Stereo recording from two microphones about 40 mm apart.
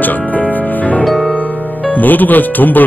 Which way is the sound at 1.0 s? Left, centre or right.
Centre.